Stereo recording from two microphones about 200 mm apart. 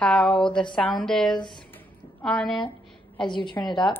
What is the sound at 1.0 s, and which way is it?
A woman's voice, 5° left (ahead or behind).